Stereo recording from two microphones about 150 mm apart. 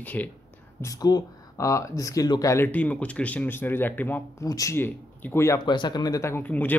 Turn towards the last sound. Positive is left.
turn(degrees=10)  # may be behind; listen again after turning